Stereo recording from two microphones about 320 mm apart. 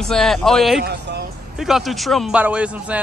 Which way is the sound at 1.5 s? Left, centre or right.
Centre.